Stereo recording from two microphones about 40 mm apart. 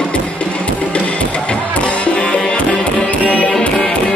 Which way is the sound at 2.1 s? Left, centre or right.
Left.